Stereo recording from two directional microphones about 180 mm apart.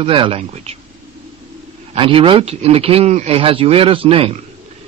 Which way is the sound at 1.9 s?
30° right (ahead or behind).